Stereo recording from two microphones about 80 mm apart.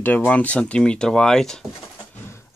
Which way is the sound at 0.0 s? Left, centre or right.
Left.